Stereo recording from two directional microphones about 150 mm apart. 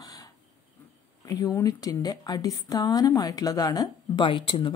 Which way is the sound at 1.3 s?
20° left (ahead or behind).